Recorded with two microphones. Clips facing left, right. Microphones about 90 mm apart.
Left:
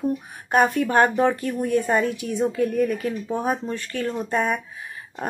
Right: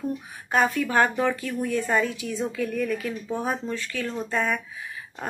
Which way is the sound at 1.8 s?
30° left (ahead or behind).